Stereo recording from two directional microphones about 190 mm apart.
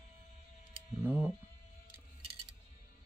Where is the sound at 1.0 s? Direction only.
10° right (ahead or behind).